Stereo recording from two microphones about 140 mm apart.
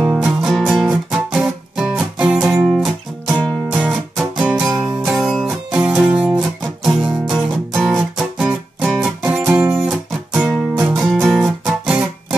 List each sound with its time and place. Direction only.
0.0 s music: 5° right (ahead or behind)
4.6 s music: 20° right (ahead or behind)
5.1 s music: centre (ahead or behind)
9.5 s guitar: 10° right (ahead or behind)
9.8 s music: centre (ahead or behind)